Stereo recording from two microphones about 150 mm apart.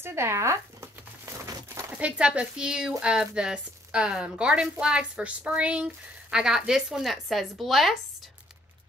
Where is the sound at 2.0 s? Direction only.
5° right (ahead or behind).